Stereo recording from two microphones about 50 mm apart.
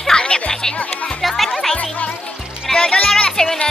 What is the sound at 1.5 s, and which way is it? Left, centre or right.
Music, centre.